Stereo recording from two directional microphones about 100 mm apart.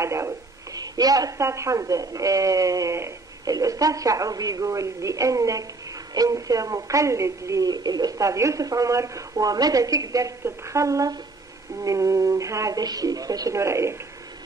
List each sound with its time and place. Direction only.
0.0 s a woman's voice: 30° right (ahead or behind)